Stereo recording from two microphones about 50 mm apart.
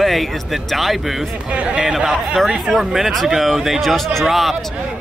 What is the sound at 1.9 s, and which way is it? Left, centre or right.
A man's voice, centre.